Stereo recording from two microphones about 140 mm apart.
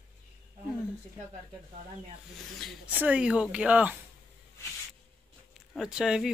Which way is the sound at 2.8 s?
10° right (ahead or behind).